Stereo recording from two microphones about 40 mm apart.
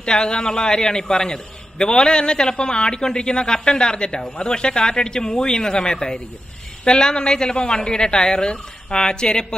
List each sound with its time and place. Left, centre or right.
0.0 s a man's voice: left